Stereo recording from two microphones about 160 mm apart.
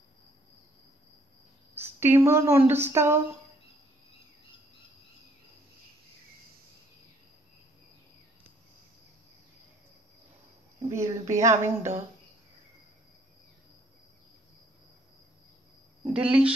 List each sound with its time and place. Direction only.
1.8 s speech: 15° right (ahead or behind)
10.9 s speech: 20° right (ahead or behind)
16.1 s speech: 5° right (ahead or behind)